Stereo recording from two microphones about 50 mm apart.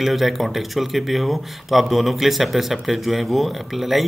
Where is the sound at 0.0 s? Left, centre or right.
Centre.